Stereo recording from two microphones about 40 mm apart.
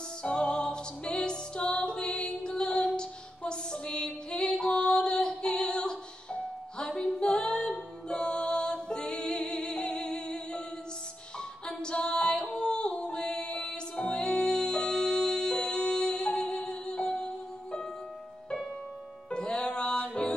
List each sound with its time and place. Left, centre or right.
0.2 s music: left
3.0 s female singing: left
5.6 s music: left
19.3 s music: left